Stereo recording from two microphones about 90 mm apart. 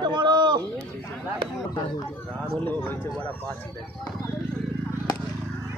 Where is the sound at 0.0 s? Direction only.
55° right (ahead or behind).